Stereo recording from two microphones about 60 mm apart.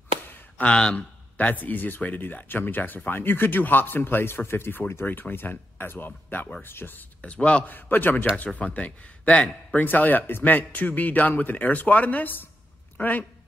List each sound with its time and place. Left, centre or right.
0.7 s a man's voice: centre
1.4 s speech: left
7.2 s speech: left
7.7 s a man's voice: left